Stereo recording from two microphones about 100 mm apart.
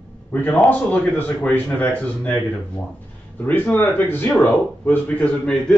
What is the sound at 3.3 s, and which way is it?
Speech, 20° left (ahead or behind).